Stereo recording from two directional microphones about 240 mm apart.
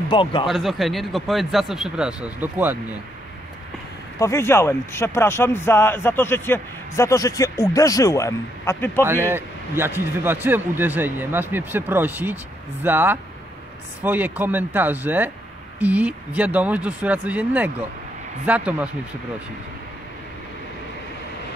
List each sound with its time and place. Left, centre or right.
0.1 s speech: left
0.5 s speech: centre
4.2 s speech: centre
9.0 s a man's voice: centre